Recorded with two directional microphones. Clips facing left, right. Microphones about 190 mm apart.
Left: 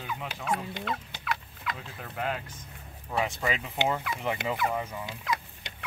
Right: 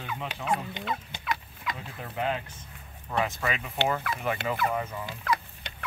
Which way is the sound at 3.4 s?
20° left (ahead or behind).